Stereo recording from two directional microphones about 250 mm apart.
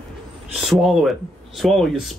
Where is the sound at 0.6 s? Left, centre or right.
Centre.